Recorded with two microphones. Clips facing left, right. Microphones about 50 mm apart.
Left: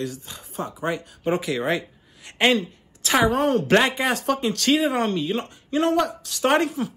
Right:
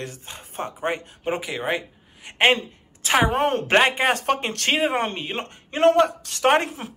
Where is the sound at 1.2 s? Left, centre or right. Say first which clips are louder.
Left 4 dB; right.